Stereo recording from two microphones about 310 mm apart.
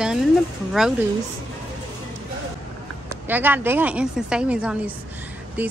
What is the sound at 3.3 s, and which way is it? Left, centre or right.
A woman's voice, centre.